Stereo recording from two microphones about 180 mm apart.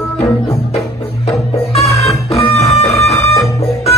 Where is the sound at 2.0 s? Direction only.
35° left (ahead or behind).